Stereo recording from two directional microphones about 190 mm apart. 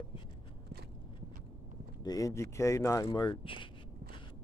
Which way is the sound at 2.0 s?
20° left (ahead or behind).